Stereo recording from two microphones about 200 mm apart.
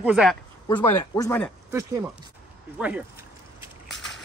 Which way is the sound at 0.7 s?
15° left (ahead or behind).